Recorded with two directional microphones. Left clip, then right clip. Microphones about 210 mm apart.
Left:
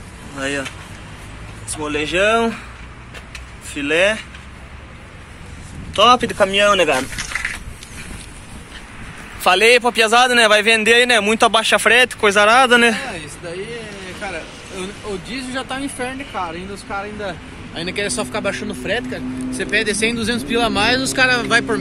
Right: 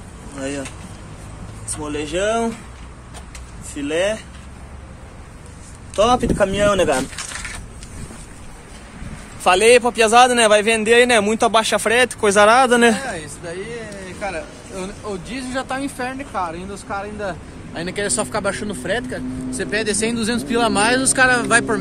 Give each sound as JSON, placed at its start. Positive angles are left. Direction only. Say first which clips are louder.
{"t": 0.4, "sound": "a man's voice", "louder": "left 4 dB", "side_deg": 0}
{"t": 1.7, "sound": "speech", "louder": "left 4 dB", "side_deg": 10}
{"t": 3.7, "sound": "speech", "louder": "left 4 dB", "side_deg": 10}
{"t": 5.9, "sound": "speech", "louder": "left 3 dB", "side_deg": -10}
{"t": 9.4, "sound": "a man's voice", "louder": "even", "side_deg": 5}